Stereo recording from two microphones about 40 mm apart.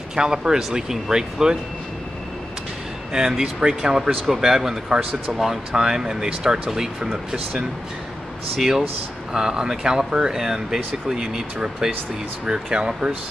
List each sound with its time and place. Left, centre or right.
0.1 s speech: centre
3.1 s speech: centre
5.4 s speech: centre
5.8 s speech: centre